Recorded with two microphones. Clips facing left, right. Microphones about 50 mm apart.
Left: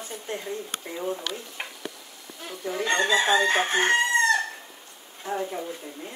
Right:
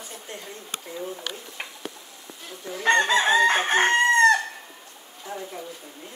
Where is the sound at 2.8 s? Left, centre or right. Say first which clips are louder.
Right 3 dB; right.